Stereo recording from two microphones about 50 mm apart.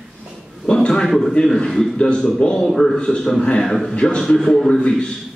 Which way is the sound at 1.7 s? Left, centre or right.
Centre.